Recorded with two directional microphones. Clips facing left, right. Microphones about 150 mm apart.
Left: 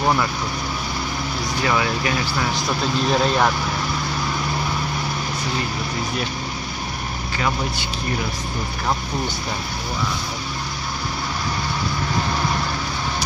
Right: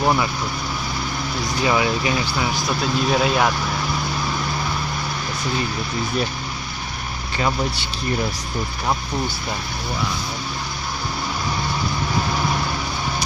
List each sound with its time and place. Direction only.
1.6 s speech: 20° right (ahead or behind)
2.8 s a man's voice: 5° right (ahead or behind)